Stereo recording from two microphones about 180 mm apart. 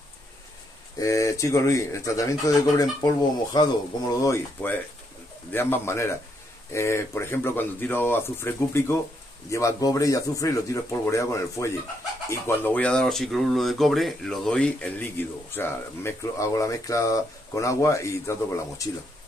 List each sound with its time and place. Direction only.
0.9 s speech: 15° left (ahead or behind)
5.5 s speech: 10° left (ahead or behind)